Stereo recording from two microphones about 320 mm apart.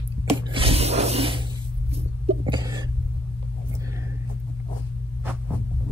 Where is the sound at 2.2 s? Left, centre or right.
Centre.